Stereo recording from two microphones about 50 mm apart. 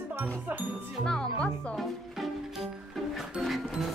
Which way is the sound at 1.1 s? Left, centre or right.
Centre.